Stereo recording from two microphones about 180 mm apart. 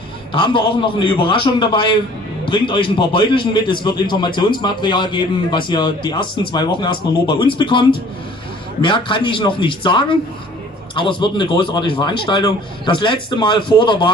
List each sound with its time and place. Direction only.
0.3 s a man's voice: 30° left (ahead or behind)